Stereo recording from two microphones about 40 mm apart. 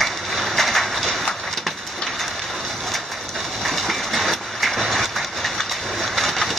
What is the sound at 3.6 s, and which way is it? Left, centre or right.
Train, centre.